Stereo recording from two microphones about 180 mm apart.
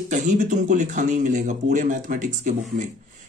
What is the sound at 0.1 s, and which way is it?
Speech, 45° right (ahead or behind).